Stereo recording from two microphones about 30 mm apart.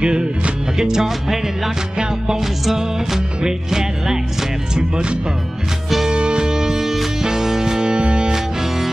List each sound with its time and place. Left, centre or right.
0.0 s music: right
0.7 s music: centre
2.6 s music: centre
4.7 s speech: right
6.0 s music: right
7.9 s music: right